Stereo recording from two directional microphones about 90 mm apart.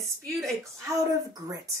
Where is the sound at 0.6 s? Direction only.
40° right (ahead or behind).